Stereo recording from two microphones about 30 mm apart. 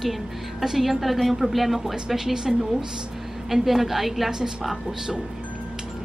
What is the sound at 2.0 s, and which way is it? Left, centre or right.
A woman's voice, centre.